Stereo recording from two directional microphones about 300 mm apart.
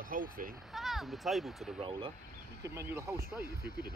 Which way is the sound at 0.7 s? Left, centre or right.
Centre.